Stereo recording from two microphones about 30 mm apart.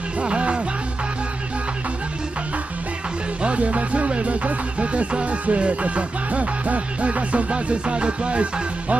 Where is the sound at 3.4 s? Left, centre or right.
Right.